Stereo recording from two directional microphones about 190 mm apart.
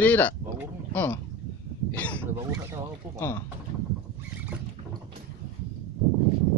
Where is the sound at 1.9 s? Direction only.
10° left (ahead or behind).